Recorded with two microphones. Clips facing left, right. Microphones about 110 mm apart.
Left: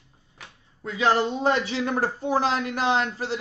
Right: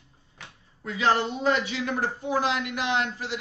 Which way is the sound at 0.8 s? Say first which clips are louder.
Left 2 dB; 30° left (ahead or behind).